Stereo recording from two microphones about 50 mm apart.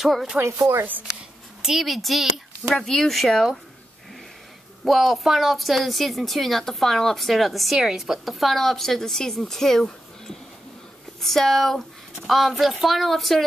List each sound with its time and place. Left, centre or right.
0.0 s a woman's voice: centre
0.4 s speech: right
1.6 s a woman's voice: centre
4.8 s a woman's voice: centre
7.8 s a woman's voice: centre